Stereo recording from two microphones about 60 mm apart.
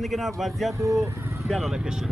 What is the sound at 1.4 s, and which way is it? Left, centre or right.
Speech, centre.